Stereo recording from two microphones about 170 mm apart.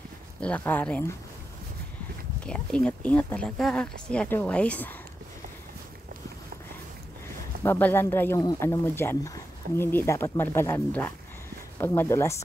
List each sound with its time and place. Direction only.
0.4 s speech: 10° left (ahead or behind)
2.4 s speech: 5° left (ahead or behind)
7.6 s speech: 15° left (ahead or behind)